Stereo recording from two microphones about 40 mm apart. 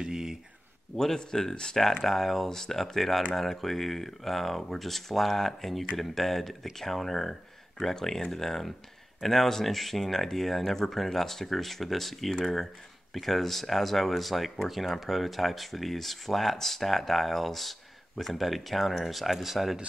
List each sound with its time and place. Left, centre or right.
0.0 s a sound: centre
0.9 s speech: centre
2.0 s speech: centre